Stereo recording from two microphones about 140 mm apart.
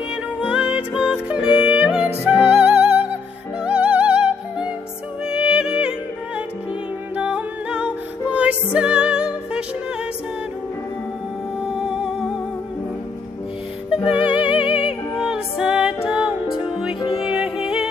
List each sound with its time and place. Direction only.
0.1 s music: 5° right (ahead or behind)
11.8 s music: 5° right (ahead or behind)
13.9 s music: 40° left (ahead or behind)
15.2 s music: 5° right (ahead or behind)